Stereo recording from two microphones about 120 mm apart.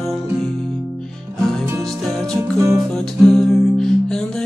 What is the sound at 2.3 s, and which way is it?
Music, 25° right (ahead or behind).